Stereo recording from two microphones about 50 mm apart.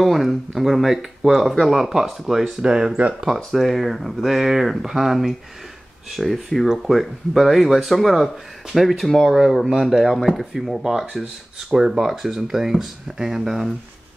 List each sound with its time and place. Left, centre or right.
0.0 s speech: centre
2.6 s speech: centre
3.5 s speech: centre
10.1 s speech: centre
10.4 s speech: centre